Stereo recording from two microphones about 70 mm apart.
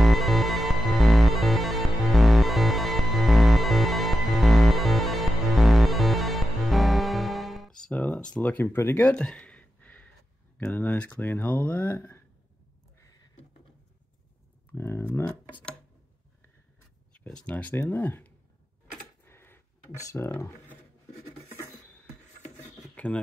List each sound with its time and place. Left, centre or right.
0.0 s music: centre
7.9 s a sound: centre
10.7 s speech: left
14.7 s speech: left
15.2 s speech: centre
17.3 s speech: centre
19.2 s a sound: left
20.0 s speech: left
22.9 s a sound: left